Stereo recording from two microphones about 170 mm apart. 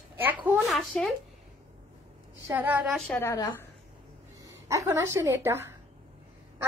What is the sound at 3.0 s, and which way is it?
Speech, 10° left (ahead or behind).